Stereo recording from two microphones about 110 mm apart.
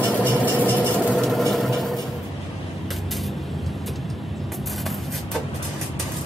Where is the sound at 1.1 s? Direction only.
Centre (ahead or behind).